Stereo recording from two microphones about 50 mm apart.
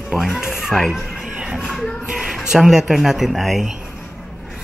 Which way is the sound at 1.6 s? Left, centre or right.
Centre.